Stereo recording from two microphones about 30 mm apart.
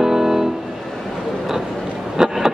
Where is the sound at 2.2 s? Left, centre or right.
Right.